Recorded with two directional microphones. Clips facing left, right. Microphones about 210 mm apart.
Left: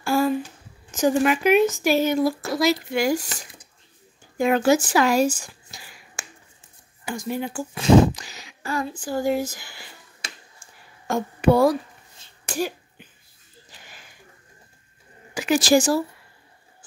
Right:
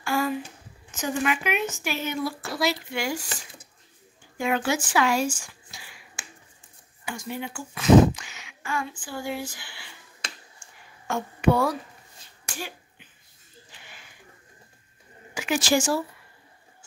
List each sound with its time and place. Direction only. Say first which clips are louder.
0.0 s a sound: left 5 dB; 35° left (ahead or behind)
1.0 s speech: left 8 dB; 40° left (ahead or behind)
4.4 s speech: left 7 dB; 40° left (ahead or behind)
11.1 s speech: left 4 dB; 40° left (ahead or behind)
12.5 s cough: left 11 dB; 40° left (ahead or behind)
13.7 s a sound: left 2 dB; 40° left (ahead or behind)
15.3 s speech: left 6 dB; 40° left (ahead or behind)